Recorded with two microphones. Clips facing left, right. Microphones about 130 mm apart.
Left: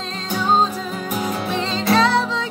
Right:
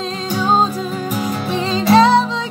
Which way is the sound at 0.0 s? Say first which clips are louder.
Right 4 dB; 10° right (ahead or behind).